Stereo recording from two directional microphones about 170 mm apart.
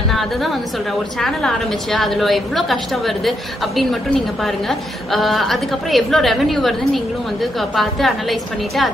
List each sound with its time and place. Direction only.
0.1 s a woman's voice: centre (ahead or behind)